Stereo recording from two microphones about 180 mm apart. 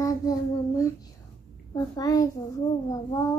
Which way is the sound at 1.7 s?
20° left (ahead or behind).